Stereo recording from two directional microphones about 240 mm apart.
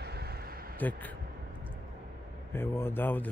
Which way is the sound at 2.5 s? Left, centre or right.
Centre.